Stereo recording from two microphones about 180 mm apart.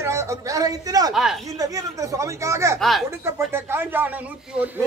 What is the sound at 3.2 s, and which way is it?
Speech, 15° right (ahead or behind).